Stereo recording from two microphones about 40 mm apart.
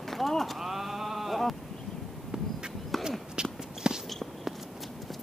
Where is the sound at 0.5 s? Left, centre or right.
Centre.